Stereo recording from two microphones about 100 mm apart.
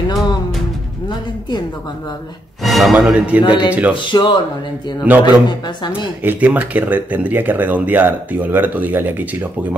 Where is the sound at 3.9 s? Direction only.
50° left (ahead or behind).